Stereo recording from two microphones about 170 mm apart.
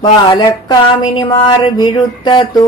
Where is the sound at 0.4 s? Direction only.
25° left (ahead or behind).